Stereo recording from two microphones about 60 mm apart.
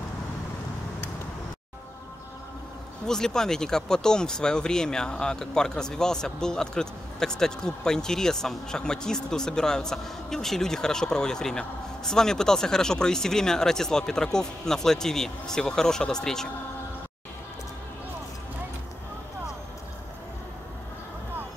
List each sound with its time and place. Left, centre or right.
3.1 s speech: centre